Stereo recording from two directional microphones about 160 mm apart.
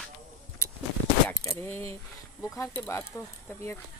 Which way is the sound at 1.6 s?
15° left (ahead or behind).